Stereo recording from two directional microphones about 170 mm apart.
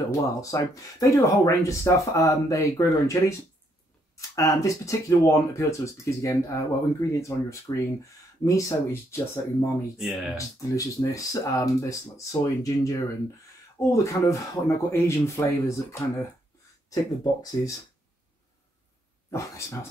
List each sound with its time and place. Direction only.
0.4 s speech: 20° left (ahead or behind)
4.4 s speech: 20° left (ahead or behind)
9.9 s speech: centre (ahead or behind)
10.3 s speech: 20° left (ahead or behind)
17.2 s speech: 20° left (ahead or behind)
19.3 s speech: 15° left (ahead or behind)